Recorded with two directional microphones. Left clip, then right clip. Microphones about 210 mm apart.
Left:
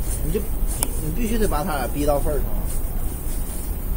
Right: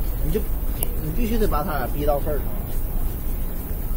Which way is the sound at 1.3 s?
35° left (ahead or behind).